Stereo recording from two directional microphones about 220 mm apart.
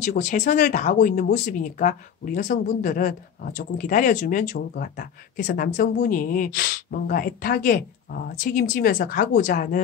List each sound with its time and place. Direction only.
0.0 s speech: 35° left (ahead or behind)